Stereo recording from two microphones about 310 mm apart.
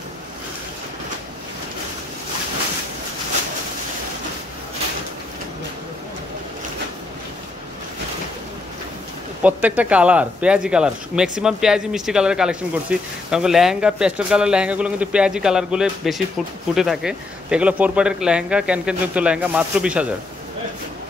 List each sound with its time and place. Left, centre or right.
9.4 s speech: centre